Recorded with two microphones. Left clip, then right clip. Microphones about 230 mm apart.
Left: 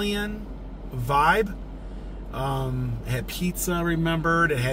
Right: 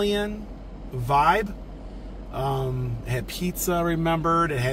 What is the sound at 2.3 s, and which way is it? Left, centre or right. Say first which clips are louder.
Speech: right 2 dB; centre.